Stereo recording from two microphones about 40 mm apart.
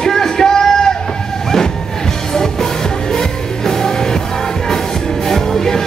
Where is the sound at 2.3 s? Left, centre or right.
Centre.